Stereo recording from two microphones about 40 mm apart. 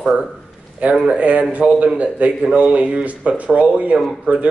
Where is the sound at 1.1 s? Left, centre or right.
Right.